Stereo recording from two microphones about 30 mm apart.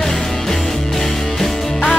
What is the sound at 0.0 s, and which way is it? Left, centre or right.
Music, centre.